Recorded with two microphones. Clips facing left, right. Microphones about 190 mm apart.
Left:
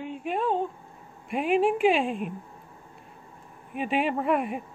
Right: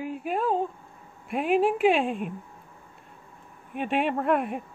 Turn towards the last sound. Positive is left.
turn(degrees=0)  # may be behind; listen again after turning